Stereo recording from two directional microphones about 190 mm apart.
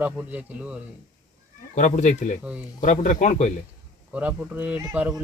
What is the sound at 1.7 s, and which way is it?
Speech, 40° left (ahead or behind).